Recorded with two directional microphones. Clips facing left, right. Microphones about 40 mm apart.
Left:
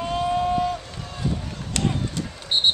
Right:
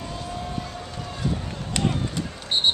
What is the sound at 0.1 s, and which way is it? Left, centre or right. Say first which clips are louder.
Vehicle: left 14 dB; left.